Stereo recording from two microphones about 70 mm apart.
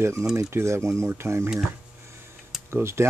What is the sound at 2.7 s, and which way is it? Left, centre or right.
Speech, right.